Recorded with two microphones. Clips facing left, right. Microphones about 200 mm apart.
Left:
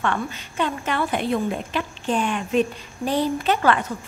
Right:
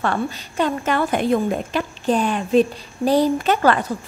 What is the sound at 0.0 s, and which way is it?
A woman's voice, 40° right (ahead or behind).